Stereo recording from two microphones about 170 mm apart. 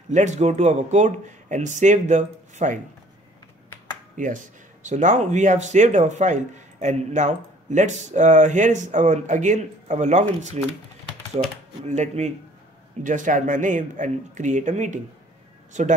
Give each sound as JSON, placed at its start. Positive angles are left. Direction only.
{"t": 0.1, "sound": "speech", "side_deg": -45}
{"t": 4.2, "sound": "speech", "side_deg": -50}